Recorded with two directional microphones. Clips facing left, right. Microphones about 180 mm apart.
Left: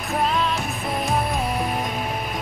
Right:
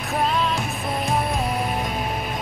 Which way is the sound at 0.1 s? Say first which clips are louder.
Even; centre (ahead or behind).